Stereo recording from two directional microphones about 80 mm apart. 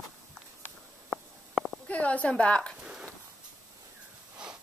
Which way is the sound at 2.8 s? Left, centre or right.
Centre.